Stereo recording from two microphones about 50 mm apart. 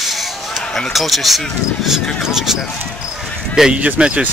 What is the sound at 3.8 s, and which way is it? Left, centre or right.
Speech, right.